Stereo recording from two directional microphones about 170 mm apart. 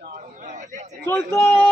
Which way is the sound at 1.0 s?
15° left (ahead or behind).